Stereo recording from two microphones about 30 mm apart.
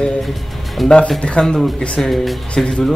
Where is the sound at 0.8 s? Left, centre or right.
Centre.